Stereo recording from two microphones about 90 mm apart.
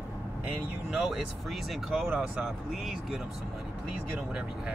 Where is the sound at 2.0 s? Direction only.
20° right (ahead or behind).